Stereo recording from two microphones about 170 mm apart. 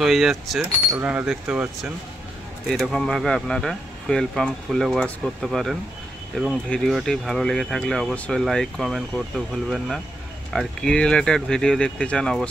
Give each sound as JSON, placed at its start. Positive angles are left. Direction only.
{"t": 0.0, "sound": "speech", "side_deg": 0}